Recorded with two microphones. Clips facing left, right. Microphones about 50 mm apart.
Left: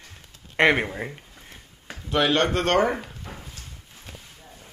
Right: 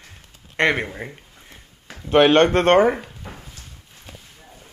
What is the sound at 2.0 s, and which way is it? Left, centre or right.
Speech, right.